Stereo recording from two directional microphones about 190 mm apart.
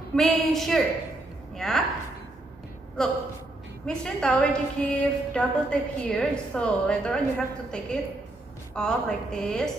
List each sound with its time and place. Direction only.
0.1 s a woman's voice: centre (ahead or behind)
3.8 s a woman's voice: 5° left (ahead or behind)